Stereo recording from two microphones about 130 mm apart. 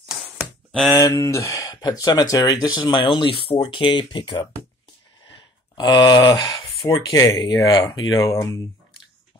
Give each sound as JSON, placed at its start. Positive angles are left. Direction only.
{"t": 0.7, "sound": "speech", "side_deg": 0}
{"t": 0.9, "sound": "speech", "side_deg": 25}
{"t": 5.3, "sound": "a sound", "side_deg": 35}
{"t": 7.1, "sound": "speech", "side_deg": 25}
{"t": 8.3, "sound": "speech", "side_deg": 25}